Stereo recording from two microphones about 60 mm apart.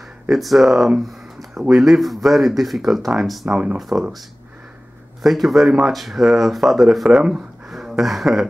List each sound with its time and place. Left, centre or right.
0.3 s speech: centre
3.9 s speech: right
5.2 s speech: centre
7.2 s speech: centre